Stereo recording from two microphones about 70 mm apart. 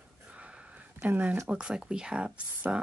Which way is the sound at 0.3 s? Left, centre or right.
Centre.